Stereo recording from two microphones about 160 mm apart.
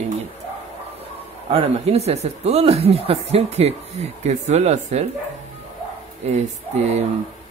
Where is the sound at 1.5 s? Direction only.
40° right (ahead or behind).